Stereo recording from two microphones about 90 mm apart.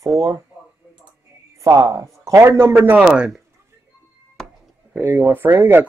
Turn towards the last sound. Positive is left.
turn(degrees=-25)  # may be behind; listen again after turning